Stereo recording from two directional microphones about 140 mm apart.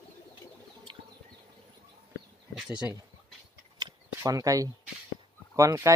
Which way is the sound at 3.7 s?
30° right (ahead or behind).